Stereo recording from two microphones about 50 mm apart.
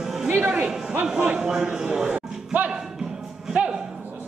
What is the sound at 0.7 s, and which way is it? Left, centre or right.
A man's voice, centre.